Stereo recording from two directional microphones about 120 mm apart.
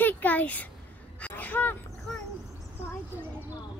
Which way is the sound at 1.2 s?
15° left (ahead or behind).